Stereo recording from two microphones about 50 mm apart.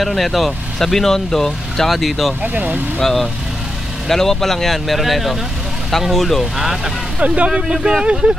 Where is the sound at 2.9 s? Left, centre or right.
Centre.